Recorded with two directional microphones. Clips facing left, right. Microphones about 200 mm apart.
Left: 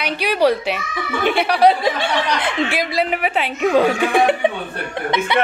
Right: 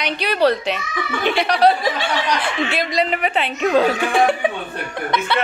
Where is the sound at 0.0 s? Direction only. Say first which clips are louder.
Left 1 dB; 10° left (ahead or behind).